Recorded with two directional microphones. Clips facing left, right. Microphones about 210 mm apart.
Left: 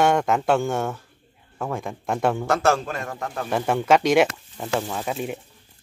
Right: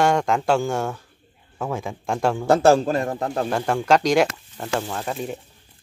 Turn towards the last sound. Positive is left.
turn(degrees=5)  # may be behind; listen again after turning